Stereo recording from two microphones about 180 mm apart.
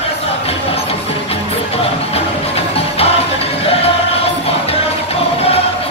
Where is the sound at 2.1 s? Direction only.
35° left (ahead or behind).